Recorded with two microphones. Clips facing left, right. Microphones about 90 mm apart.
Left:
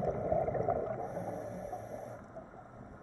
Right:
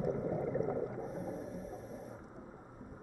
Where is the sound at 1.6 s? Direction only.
90° left.